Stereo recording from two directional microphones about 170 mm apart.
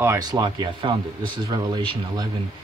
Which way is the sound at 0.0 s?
20° right (ahead or behind).